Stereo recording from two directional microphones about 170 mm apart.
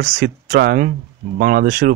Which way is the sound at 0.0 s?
55° right (ahead or behind).